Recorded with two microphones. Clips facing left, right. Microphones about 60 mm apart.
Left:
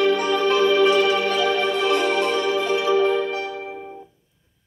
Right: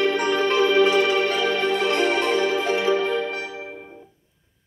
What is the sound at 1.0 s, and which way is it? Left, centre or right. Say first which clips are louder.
Music: left 1 dB; right.